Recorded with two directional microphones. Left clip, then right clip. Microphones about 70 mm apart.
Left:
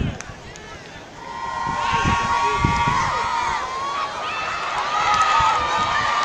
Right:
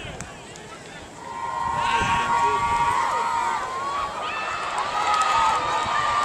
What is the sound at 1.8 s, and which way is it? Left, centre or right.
Sheep, centre.